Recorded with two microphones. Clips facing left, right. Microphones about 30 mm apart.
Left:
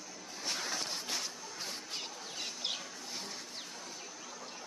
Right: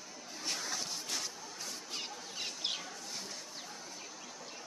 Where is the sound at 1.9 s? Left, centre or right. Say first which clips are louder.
Even; centre.